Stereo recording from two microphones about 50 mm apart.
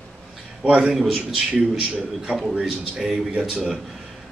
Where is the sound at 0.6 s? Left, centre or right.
Centre.